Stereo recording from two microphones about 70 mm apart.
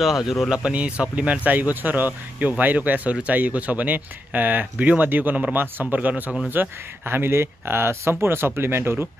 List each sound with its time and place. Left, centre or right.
0.0 s speech: centre
0.7 s speech: centre; by 8.9 s right